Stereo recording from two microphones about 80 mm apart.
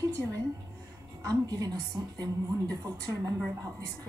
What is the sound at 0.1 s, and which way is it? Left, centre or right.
A woman's voice, right.